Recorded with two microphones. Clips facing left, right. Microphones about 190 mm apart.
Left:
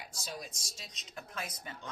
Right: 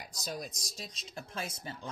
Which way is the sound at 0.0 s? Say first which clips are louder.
Right 4 dB; 40° right (ahead or behind).